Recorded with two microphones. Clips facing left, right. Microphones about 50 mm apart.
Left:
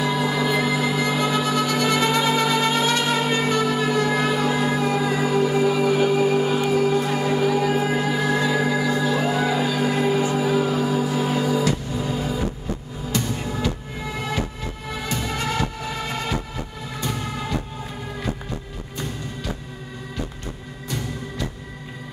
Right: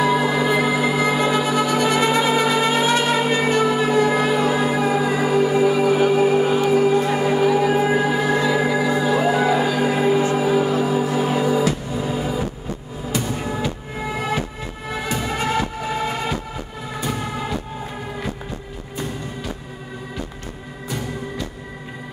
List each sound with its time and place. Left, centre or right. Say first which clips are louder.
0.0 s music: right 4 dB; centre